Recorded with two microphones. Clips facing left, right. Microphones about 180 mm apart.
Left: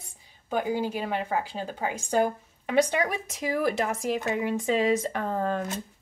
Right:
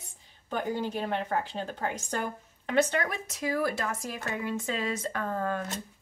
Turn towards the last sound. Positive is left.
turn(degrees=20)  # may be behind; listen again after turning